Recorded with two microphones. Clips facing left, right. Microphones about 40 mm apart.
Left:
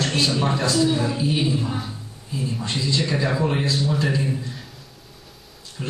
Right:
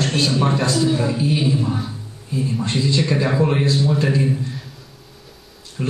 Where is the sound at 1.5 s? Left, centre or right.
Centre.